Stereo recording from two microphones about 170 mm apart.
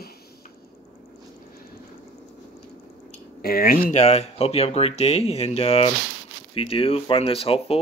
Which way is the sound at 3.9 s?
40° left (ahead or behind).